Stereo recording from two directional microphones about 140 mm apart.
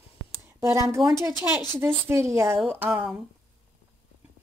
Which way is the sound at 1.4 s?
15° right (ahead or behind).